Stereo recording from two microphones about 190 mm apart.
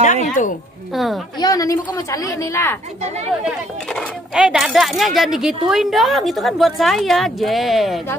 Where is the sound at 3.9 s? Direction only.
Centre (ahead or behind).